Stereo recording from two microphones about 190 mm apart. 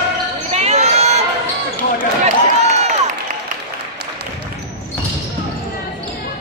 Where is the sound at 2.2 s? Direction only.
35° right (ahead or behind).